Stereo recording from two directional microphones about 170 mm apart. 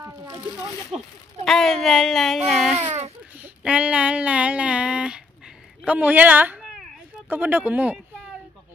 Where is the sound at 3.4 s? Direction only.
5° right (ahead or behind).